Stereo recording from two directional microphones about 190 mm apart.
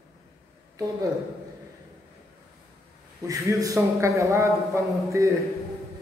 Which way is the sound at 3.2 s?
15° right (ahead or behind).